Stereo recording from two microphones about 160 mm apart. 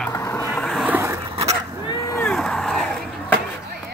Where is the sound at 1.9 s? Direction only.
20° left (ahead or behind).